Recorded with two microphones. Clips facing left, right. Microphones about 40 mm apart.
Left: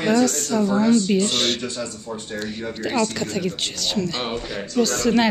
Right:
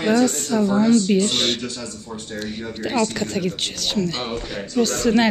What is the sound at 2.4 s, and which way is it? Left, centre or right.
Speech, centre.